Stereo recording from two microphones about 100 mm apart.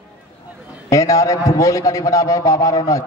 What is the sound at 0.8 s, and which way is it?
A man's voice, 35° left (ahead or behind).